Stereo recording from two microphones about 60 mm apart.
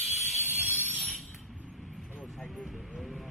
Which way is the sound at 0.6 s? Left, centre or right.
Right.